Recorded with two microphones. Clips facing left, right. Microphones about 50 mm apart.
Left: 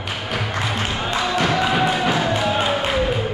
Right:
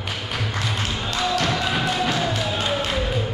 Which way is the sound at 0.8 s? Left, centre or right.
Left.